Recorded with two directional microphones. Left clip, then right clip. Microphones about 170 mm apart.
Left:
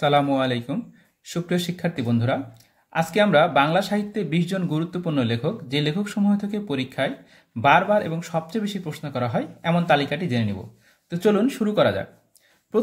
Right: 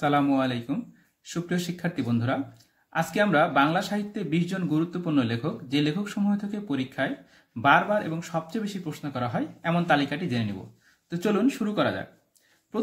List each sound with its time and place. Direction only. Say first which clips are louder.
0.0 s speech: left 4 dB; 20° left (ahead or behind)